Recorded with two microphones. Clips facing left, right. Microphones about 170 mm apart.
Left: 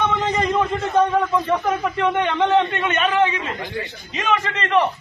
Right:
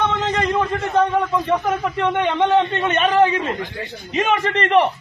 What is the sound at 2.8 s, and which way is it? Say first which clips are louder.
Speech: right 3 dB; 35° right (ahead or behind).